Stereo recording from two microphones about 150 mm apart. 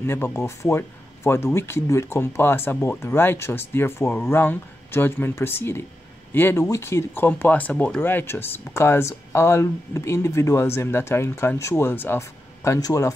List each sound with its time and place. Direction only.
0.0 s speech: 15° left (ahead or behind)